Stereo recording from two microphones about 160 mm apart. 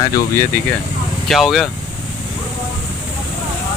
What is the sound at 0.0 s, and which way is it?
Speech, 20° left (ahead or behind).